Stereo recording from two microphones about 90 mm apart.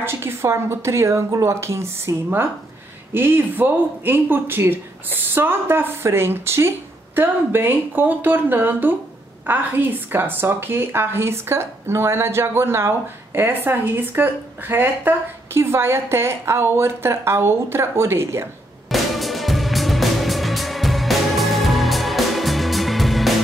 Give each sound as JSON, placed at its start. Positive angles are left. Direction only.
{"t": 0.0, "sound": "a woman's voice", "side_deg": -30}
{"t": 18.9, "sound": "music", "side_deg": 0}